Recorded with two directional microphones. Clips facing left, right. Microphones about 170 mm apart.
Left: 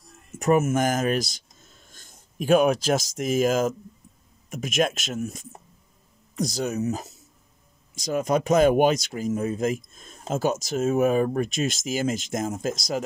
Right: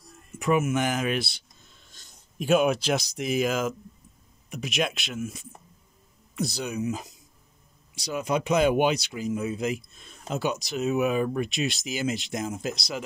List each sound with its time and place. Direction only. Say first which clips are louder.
0.4 s speech: left 3 dB; 45° left (ahead or behind)